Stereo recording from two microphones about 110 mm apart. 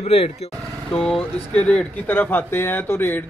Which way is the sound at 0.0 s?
70° left (ahead or behind).